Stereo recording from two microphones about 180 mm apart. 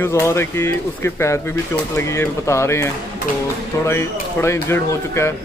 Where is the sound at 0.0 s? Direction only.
15° left (ahead or behind).